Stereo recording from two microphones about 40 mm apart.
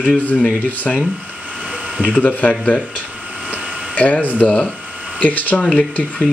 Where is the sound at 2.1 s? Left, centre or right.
Left.